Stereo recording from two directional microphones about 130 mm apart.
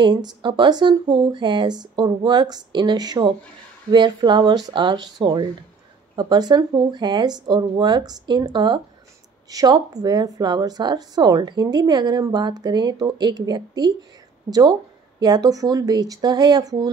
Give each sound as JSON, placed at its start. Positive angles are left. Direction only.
{"t": 0.0, "sound": "speech", "side_deg": -35}